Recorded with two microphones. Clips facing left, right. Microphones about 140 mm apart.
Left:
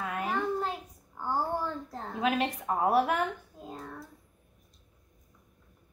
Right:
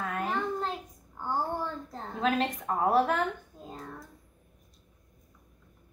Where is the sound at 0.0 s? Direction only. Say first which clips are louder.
Even; 10° left (ahead or behind).